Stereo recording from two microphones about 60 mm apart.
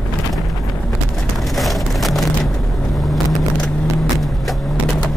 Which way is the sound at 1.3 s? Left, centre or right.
Centre.